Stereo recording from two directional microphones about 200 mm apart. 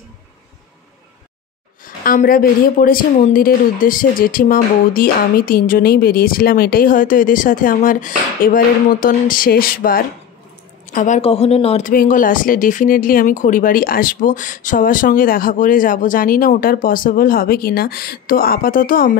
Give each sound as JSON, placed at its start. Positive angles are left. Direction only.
{"t": 2.0, "sound": "speech", "side_deg": 45}
{"t": 11.9, "sound": "speech", "side_deg": 45}